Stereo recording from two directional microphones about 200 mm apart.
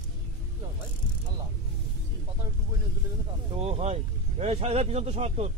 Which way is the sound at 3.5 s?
30° right (ahead or behind).